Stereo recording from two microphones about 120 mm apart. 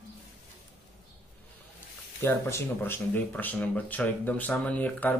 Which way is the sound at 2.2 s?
20° left (ahead or behind).